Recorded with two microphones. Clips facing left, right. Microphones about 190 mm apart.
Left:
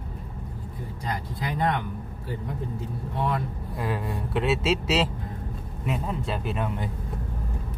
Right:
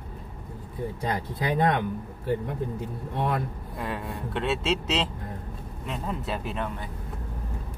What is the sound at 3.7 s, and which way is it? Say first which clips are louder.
A man's voice: left 3 dB; centre (ahead or behind).